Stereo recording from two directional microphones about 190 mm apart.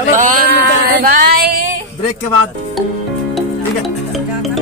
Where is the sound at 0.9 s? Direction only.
50° right (ahead or behind).